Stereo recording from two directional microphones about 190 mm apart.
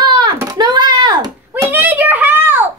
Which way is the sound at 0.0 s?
20° right (ahead or behind).